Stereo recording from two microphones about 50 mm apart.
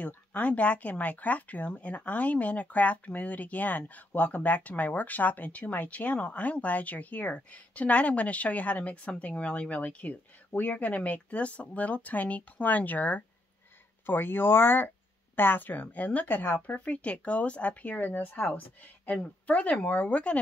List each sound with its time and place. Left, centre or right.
0.0 s speech: left
14.0 s speech: left
15.8 s speech: left